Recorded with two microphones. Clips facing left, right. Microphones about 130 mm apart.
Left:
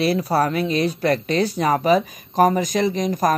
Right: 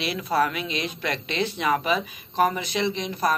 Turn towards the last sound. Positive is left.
turn(degrees=40)  # may be behind; listen again after turning